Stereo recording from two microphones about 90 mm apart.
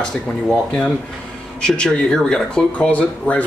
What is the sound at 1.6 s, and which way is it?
A man's voice, 10° left (ahead or behind).